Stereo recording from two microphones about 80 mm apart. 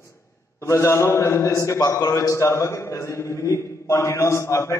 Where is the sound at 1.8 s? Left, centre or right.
Left.